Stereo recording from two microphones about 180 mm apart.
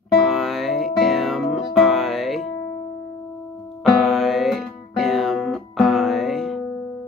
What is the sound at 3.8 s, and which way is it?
Music, centre (ahead or behind).